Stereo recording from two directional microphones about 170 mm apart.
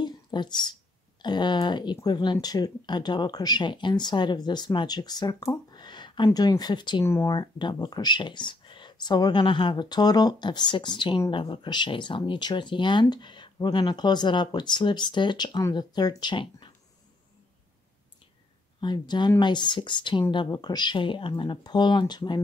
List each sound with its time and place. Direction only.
0.0 s whispering: 25° left (ahead or behind)
1.2 s speech: 25° left (ahead or behind)
7.1 s speech: 15° left (ahead or behind)
7.3 s speech: 25° left (ahead or behind)
18.8 s speech: 25° left (ahead or behind)